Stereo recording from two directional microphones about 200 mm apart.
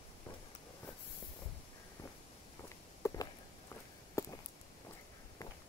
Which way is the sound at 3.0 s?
15° left (ahead or behind).